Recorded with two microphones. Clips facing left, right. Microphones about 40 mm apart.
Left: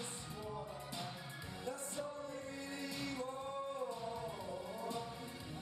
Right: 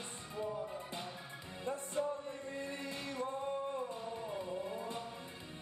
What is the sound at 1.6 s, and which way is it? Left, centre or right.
Music, right.